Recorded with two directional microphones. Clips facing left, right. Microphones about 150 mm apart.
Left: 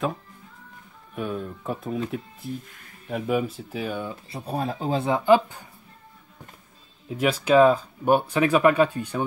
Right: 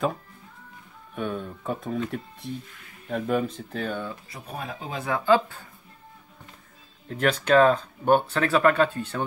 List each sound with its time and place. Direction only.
1.1 s speech: 5° left (ahead or behind)
4.1 s speech: 30° left (ahead or behind)
7.1 s speech: 5° left (ahead or behind)